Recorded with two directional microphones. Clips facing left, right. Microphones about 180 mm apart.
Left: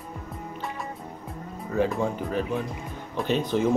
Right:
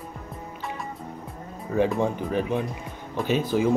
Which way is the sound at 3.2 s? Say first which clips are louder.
Right 1 dB; centre (ahead or behind).